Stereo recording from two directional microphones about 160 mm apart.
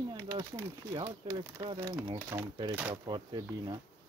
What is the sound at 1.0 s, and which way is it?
Speech, 25° right (ahead or behind).